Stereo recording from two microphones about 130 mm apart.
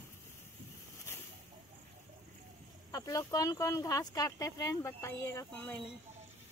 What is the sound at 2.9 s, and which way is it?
Speech, 25° left (ahead or behind).